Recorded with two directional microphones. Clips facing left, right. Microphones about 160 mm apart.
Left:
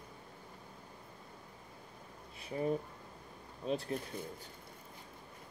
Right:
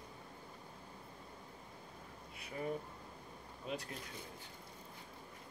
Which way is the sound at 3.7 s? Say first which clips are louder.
Left 8 dB; 30° left (ahead or behind).